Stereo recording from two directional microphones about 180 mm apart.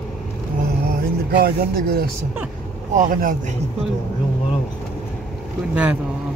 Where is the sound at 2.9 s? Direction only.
45° right (ahead or behind).